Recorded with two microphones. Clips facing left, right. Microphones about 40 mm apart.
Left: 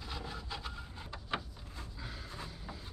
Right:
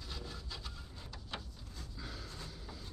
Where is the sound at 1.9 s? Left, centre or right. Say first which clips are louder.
Left 1 dB; centre.